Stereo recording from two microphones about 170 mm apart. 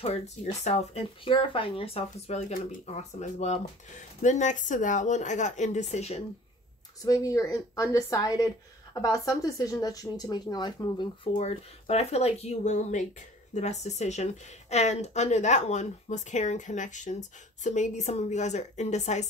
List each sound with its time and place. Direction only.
0.0 s speech: 40° left (ahead or behind)
7.0 s speech: 20° left (ahead or behind)
11.3 s speech: 40° left (ahead or behind)